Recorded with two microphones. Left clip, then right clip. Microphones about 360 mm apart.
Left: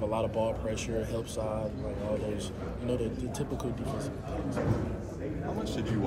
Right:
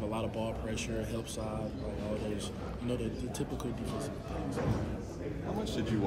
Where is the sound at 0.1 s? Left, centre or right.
Centre.